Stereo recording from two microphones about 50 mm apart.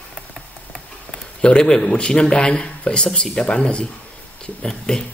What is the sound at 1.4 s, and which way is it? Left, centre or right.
Speech, centre.